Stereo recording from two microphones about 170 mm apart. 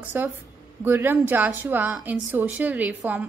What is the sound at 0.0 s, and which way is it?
A woman's voice, 10° right (ahead or behind).